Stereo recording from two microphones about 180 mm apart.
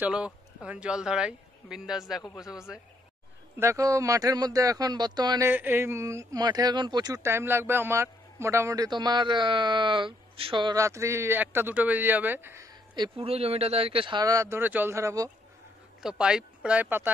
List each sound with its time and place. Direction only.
0.0 s a man's voice: 5° right (ahead or behind)
2.2 s a man's voice: 20° left (ahead or behind)
3.5 s speech: 15° right (ahead or behind)
5.5 s speech: 10° right (ahead or behind)
12.9 s speech: 30° right (ahead or behind)
16.0 s a man's voice: 5° right (ahead or behind)